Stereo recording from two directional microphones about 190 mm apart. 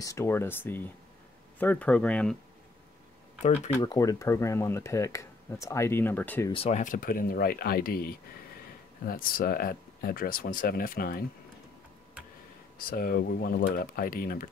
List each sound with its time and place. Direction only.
0.0 s speech: 15° left (ahead or behind)
3.8 s speech: 20° left (ahead or behind)
6.5 s speech: 35° left (ahead or behind); by 11.2 s 50° left (ahead or behind)
12.7 s speech: 50° left (ahead or behind)